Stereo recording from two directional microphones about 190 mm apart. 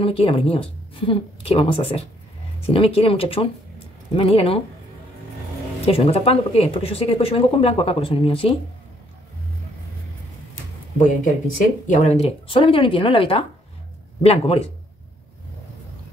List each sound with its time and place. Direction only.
0.0 s speech: 30° left (ahead or behind)
5.9 s speech: 30° left (ahead or behind)
11.5 s speech: 40° left (ahead or behind)